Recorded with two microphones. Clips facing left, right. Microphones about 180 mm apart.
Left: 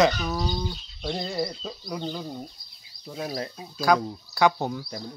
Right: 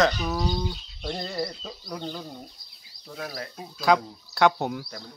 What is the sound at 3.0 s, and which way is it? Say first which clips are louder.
Speech: left 4 dB; 20° left (ahead or behind).